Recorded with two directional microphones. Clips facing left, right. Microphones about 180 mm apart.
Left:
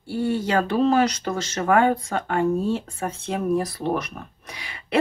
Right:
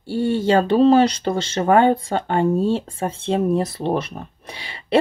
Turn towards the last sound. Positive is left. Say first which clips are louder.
# right 5 dB
turn(degrees=-30)  # may be behind; listen again after turning